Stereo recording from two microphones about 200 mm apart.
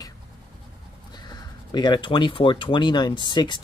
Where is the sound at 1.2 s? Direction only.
20° left (ahead or behind).